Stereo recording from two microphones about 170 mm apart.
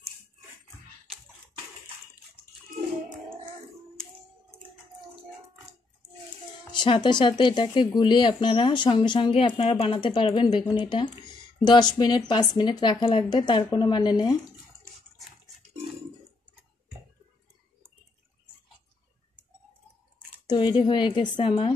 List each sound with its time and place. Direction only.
6.7 s speech: 25° left (ahead or behind)
20.4 s speech: 25° left (ahead or behind)